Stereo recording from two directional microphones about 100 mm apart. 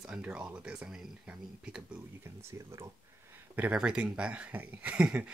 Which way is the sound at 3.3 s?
15° right (ahead or behind).